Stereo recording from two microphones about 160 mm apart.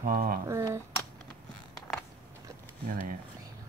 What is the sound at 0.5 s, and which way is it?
Speech, 20° right (ahead or behind).